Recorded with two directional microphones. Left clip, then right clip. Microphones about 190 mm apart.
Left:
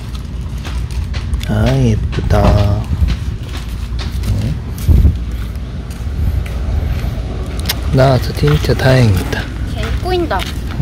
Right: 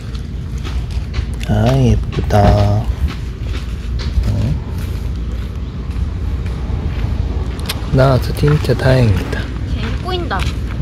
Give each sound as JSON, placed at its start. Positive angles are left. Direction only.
{"t": 1.5, "sound": "speech", "side_deg": 0}
{"t": 7.6, "sound": "vehicle", "side_deg": 10}
{"t": 8.6, "sound": "speech", "side_deg": 10}
{"t": 9.8, "sound": "a sound", "side_deg": 45}